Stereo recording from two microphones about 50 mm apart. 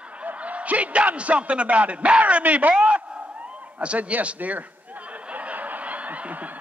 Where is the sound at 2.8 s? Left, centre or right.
Right.